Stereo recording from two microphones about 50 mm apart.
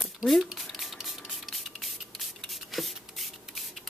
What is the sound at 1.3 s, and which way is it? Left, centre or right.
Spray, centre.